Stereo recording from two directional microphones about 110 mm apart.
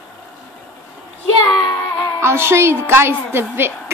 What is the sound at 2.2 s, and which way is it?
A woman's voice, 25° right (ahead or behind).